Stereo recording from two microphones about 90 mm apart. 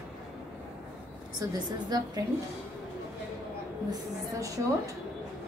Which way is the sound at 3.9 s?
40° right (ahead or behind).